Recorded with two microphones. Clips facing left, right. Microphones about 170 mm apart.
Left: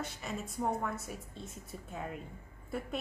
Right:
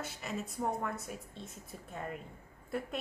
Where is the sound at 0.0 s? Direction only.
Centre (ahead or behind).